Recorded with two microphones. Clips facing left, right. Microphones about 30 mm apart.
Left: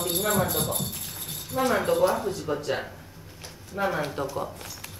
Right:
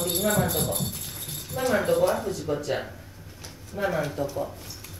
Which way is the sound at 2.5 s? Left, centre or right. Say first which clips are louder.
Right 2 dB; left.